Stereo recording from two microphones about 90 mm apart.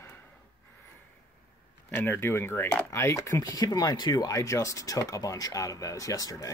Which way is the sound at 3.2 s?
45° left (ahead or behind).